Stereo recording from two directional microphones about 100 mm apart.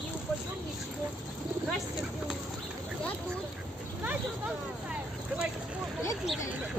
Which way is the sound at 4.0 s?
15° right (ahead or behind).